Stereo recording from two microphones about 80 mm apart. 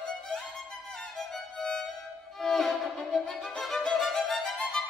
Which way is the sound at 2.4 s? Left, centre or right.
Centre.